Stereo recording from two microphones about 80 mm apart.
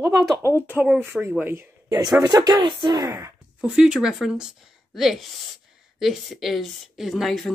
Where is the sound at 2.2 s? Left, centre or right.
Right.